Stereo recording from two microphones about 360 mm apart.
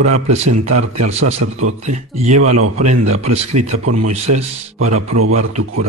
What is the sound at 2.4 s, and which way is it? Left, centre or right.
A man's voice, right.